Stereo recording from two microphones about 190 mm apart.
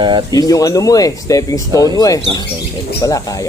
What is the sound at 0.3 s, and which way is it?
Speech, 20° left (ahead or behind).